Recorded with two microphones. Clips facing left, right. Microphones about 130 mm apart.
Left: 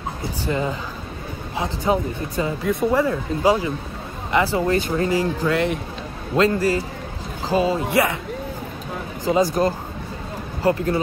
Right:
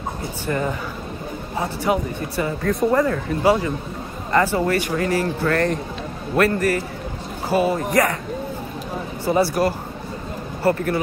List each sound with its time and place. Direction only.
0.5 s speech: 15° left (ahead or behind)
1.9 s speech: 20° left (ahead or behind)
2.7 s speech: 5° left (ahead or behind)
4.8 s speech: 25° left (ahead or behind)
9.2 s speech: 20° left (ahead or behind)